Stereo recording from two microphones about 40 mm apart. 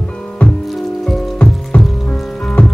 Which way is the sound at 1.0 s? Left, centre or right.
Centre.